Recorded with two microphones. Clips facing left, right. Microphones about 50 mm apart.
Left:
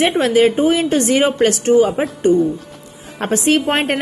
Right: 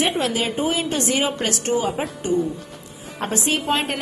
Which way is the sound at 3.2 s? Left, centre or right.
Left.